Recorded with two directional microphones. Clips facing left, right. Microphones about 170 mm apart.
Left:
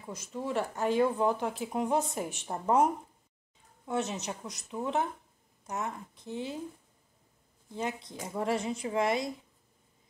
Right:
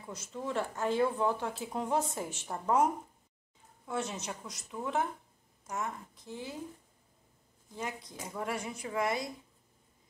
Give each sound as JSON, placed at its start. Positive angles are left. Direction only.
{"t": 0.0, "sound": "speech", "side_deg": 15}
{"t": 7.7, "sound": "speech", "side_deg": 20}